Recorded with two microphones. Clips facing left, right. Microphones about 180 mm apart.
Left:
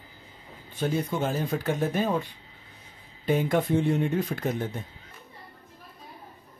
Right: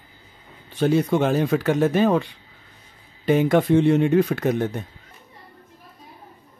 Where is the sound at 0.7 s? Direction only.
80° right.